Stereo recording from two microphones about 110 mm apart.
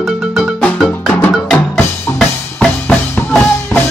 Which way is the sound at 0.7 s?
Centre (ahead or behind).